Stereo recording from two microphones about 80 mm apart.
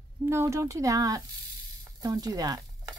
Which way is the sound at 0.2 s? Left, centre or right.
Right.